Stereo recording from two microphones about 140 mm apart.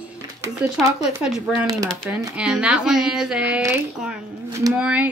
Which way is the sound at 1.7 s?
25° right (ahead or behind).